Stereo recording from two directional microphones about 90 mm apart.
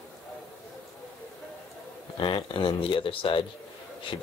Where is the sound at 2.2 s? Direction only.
65° left (ahead or behind).